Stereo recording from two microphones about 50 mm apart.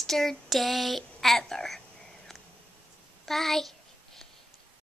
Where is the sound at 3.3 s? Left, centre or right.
Centre.